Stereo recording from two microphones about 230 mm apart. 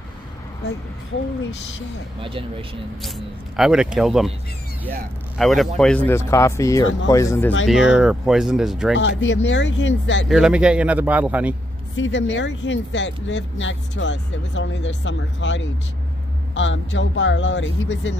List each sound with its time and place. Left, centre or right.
2.2 s speech: right
3.5 s a man's voice: centre
5.4 s a man's voice: centre
7.9 s a man's voice: centre
8.9 s speech: left
10.2 s a man's voice: centre
12.0 s speech: left